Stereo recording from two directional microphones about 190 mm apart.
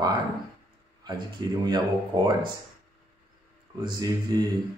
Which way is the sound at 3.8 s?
20° right (ahead or behind).